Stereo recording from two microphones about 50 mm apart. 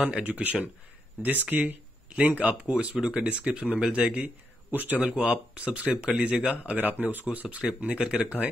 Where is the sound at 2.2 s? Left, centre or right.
Right.